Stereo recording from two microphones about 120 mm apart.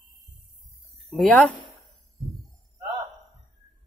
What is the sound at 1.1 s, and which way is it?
Speech, centre (ahead or behind).